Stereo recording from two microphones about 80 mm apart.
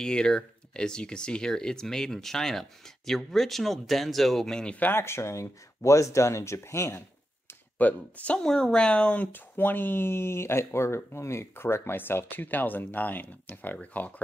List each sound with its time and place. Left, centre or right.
0.0 s speech: centre
4.7 s speech: left
7.4 s speech: centre